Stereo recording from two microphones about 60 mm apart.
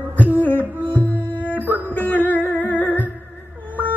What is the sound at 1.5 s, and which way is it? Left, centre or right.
Music, right.